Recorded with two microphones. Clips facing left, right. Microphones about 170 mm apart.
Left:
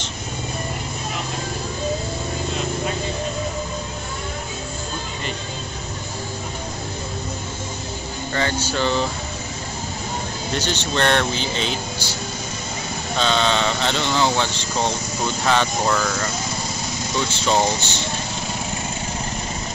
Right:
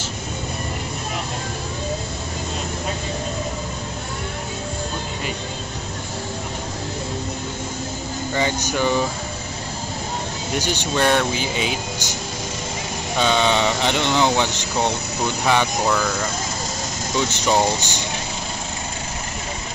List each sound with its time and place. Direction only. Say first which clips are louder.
8.4 s speech: right 1 dB; 15° right (ahead or behind)
10.5 s speech: right 1 dB; 10° right (ahead or behind)
15.8 s speech: even; centre (ahead or behind)
17.3 s speech: even; 15° right (ahead or behind)